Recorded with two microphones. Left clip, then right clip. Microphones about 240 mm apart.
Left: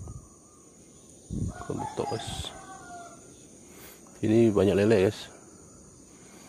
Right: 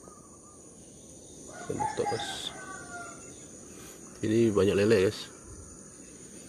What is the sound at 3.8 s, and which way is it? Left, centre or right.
Speech, left.